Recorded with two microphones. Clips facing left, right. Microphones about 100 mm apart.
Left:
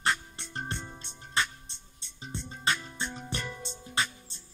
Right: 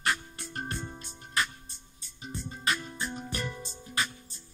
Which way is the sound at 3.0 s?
5° right (ahead or behind).